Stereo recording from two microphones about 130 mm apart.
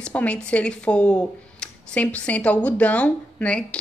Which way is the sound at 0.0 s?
10° left (ahead or behind).